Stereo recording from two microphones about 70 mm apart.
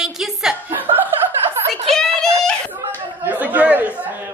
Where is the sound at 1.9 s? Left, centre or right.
Centre.